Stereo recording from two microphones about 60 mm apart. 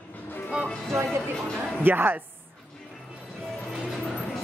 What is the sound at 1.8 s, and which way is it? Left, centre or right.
Speech, right.